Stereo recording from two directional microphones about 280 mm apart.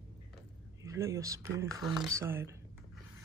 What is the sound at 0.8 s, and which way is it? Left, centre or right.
Speech, centre.